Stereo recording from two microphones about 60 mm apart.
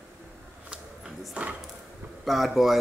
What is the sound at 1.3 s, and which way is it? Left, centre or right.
Speech, right.